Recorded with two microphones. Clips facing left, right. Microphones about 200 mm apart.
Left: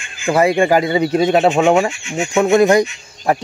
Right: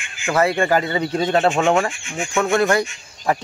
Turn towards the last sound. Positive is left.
turn(degrees=15)  # may be behind; listen again after turning